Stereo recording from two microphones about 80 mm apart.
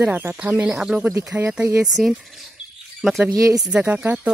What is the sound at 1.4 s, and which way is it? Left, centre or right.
Speech, right.